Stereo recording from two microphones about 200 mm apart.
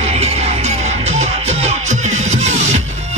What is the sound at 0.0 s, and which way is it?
Music, 30° right (ahead or behind).